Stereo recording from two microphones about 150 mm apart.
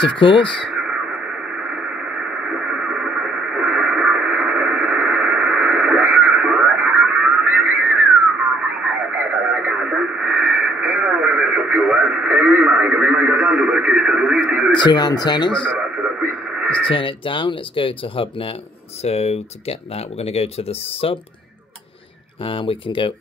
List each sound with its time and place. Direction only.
0.0 s speech: 35° left (ahead or behind)
2.4 s radio: 5° right (ahead or behind)
9.1 s radio: 10° right (ahead or behind)
14.7 s speech: 30° left (ahead or behind)
16.0 s radio: 10° right (ahead or behind)
16.8 s speech: 35° left (ahead or behind)
22.5 s speech: 35° left (ahead or behind)